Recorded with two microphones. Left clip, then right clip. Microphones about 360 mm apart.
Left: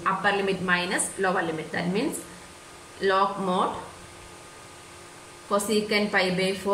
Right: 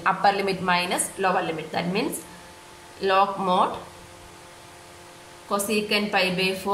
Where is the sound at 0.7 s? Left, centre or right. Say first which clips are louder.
Right 4 dB; centre.